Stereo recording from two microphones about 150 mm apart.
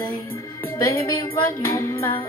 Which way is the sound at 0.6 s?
15° left (ahead or behind).